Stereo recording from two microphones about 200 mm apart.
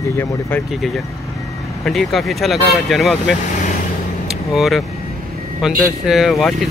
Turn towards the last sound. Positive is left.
turn(degrees=0)  # may be behind; listen again after turning